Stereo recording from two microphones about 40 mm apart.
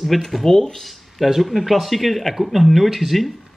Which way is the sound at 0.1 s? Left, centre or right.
Centre.